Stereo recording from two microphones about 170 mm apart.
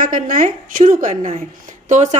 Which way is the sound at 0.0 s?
50° right (ahead or behind).